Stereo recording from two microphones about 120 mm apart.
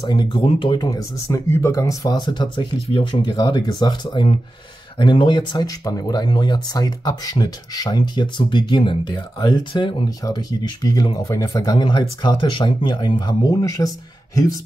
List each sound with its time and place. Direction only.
0.0 s speech: 35° left (ahead or behind)
0.9 s speech: 25° left (ahead or behind); by 10.0 s 45° left (ahead or behind)
10.0 s speech: 30° left (ahead or behind)